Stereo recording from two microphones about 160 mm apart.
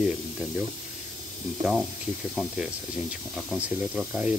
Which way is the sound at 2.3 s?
5° right (ahead or behind).